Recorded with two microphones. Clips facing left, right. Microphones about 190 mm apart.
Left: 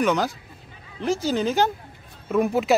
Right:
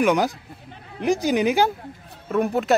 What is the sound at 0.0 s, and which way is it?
Speech, 10° right (ahead or behind).